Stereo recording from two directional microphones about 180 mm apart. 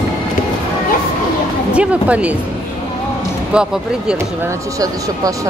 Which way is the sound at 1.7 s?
5° right (ahead or behind).